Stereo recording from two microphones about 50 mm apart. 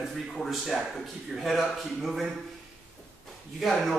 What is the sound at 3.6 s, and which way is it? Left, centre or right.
Speech, centre.